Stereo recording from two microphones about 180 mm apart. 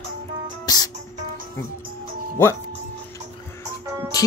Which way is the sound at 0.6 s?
20° left (ahead or behind).